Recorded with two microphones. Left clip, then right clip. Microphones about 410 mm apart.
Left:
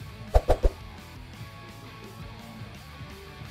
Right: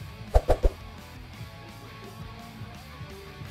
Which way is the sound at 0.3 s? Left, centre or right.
Centre.